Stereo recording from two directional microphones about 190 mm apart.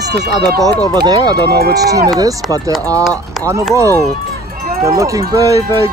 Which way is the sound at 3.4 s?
Centre (ahead or behind).